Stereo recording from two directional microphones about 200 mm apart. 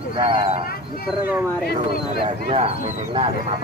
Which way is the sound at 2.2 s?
30° right (ahead or behind).